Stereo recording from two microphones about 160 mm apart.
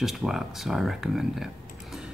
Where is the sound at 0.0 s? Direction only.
Centre (ahead or behind).